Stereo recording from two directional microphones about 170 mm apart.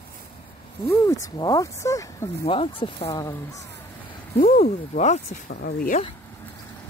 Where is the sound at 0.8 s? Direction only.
20° left (ahead or behind).